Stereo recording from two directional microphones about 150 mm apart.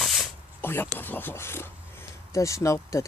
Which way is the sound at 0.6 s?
15° left (ahead or behind).